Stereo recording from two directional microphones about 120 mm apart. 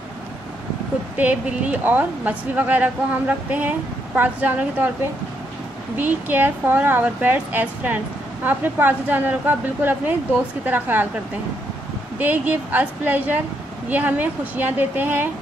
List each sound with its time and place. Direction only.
1.1 s a woman's voice: 10° right (ahead or behind)
5.9 s a woman's voice: 15° right (ahead or behind)
12.2 s a woman's voice: 15° right (ahead or behind)